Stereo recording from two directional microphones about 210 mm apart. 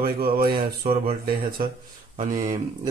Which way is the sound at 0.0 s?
45° right (ahead or behind).